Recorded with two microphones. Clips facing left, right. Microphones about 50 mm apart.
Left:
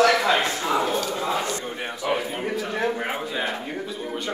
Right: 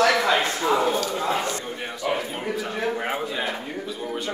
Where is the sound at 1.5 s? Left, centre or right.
Centre.